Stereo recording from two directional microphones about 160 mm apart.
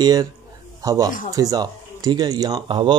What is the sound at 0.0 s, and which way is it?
A man's voice, 25° right (ahead or behind).